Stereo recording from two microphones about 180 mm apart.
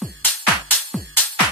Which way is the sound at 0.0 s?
5° left (ahead or behind).